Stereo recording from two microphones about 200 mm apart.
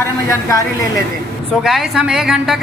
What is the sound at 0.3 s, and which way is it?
Speech, 15° left (ahead or behind).